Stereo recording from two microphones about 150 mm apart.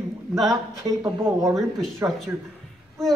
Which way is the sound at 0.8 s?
20° right (ahead or behind).